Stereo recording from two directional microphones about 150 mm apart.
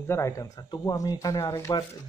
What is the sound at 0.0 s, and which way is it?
Speech, 20° left (ahead or behind).